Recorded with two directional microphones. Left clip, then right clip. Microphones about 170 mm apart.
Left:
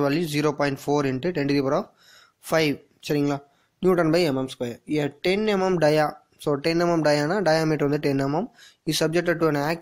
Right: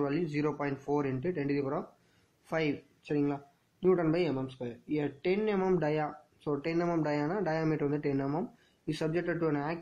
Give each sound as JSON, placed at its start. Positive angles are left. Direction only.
{"t": 0.0, "sound": "speech", "side_deg": 45}
{"t": 5.6, "sound": "speech", "side_deg": 40}